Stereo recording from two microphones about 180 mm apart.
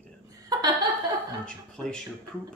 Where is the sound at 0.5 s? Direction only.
20° right (ahead or behind).